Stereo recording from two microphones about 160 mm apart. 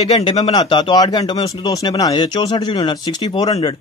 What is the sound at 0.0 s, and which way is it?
Speech, 35° left (ahead or behind).